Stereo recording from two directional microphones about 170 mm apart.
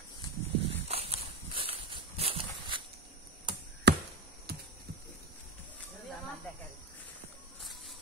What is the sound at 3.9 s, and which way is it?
Chop, 75° right (ahead or behind).